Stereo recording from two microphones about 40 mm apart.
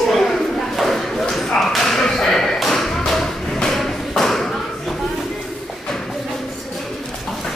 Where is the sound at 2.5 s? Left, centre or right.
Centre.